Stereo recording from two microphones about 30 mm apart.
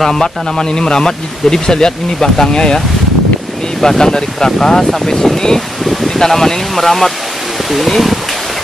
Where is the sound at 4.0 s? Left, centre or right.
Left.